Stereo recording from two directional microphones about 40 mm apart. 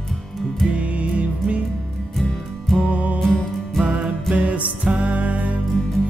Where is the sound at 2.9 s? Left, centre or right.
Right.